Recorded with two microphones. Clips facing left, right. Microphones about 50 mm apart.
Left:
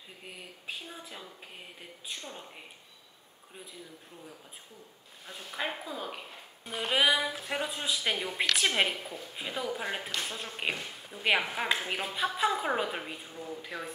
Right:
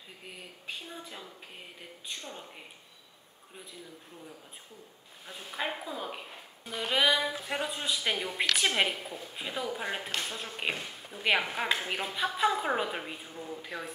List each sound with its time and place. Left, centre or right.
0.2 s speech: centre
5.2 s speech: centre
6.6 s speech: centre
11.1 s a woman's voice: right
11.5 s speech: centre
13.3 s speech: centre
13.6 s speech: centre